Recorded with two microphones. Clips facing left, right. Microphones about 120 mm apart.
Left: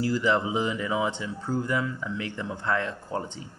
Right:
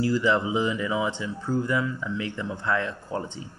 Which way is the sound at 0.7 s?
40° left (ahead or behind).